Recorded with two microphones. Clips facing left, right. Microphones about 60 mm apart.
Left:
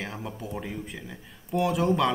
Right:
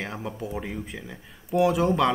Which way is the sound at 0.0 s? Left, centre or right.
Centre.